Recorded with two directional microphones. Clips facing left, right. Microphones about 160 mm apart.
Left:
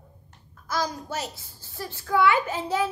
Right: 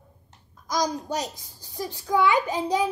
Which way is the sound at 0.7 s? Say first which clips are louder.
Right 3 dB; 15° right (ahead or behind).